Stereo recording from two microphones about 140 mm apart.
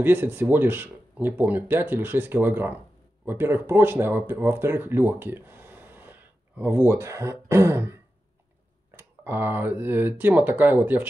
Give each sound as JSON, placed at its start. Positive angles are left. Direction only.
{"t": 0.0, "sound": "speech", "side_deg": -15}